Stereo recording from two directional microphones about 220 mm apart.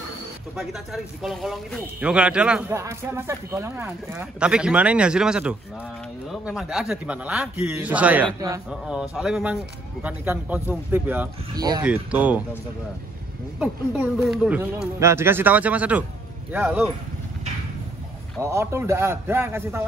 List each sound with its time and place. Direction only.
0.6 s speech: centre (ahead or behind)
11.5 s speech: 20° right (ahead or behind)
11.8 s speech: 5° right (ahead or behind)
13.6 s speech: 5° right (ahead or behind)
18.4 s speech: 10° right (ahead or behind)